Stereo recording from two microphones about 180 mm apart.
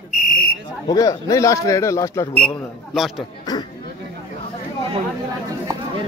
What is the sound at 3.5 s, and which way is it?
Chatter, 20° left (ahead or behind).